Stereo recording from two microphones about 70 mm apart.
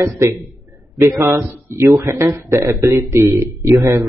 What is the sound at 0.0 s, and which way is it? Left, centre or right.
A man's voice, right.